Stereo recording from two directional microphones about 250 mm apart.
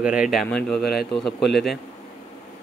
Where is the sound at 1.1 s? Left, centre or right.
Centre.